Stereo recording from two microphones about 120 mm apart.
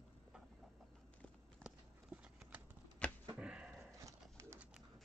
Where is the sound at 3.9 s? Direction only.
25° right (ahead or behind).